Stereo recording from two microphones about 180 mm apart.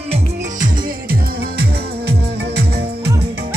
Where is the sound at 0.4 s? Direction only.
45° right (ahead or behind); by 3.1 s 65° right (ahead or behind).